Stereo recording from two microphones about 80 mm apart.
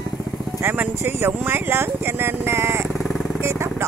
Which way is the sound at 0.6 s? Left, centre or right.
Right.